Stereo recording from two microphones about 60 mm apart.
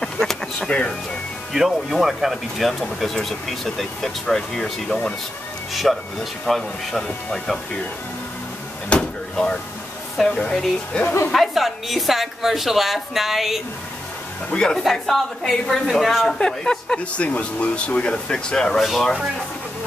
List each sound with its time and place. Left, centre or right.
0.0 s a sound: centre
1.5 s speech: centre
8.9 s vehicle: centre
10.1 s speech: centre
11.3 s speech: centre
14.5 s speech: centre
14.8 s speech: centre
16.3 s speech: centre
17.2 s speech: left; by 19.1 s centre